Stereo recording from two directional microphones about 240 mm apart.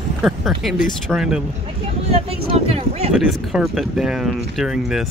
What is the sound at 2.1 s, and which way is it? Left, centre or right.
Speech, right.